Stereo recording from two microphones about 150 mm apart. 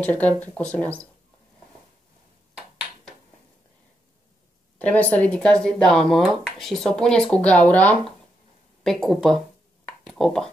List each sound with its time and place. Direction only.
0.0 s speech: 10° left (ahead or behind)
4.7 s speech: 10° left (ahead or behind)
9.8 s a sound: centre (ahead or behind)